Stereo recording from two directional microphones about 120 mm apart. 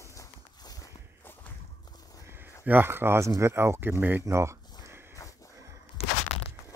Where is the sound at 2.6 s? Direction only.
15° right (ahead or behind).